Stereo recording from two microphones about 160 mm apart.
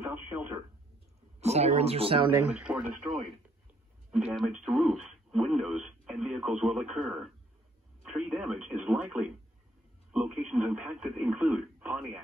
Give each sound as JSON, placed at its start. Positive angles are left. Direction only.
{"t": 0.1, "sound": "radio", "side_deg": -15}
{"t": 1.4, "sound": "speech", "side_deg": -40}
{"t": 2.3, "sound": "speech", "side_deg": -10}
{"t": 4.1, "sound": "speech", "side_deg": -5}